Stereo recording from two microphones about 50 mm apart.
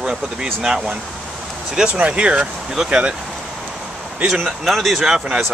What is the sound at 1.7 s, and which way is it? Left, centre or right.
Speech, centre.